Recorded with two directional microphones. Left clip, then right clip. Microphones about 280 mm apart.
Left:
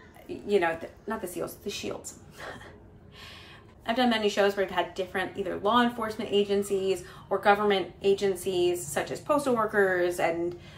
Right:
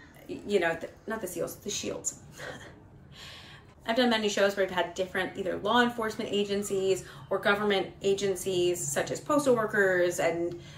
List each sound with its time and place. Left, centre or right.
0.3 s speech: centre
3.8 s speech: centre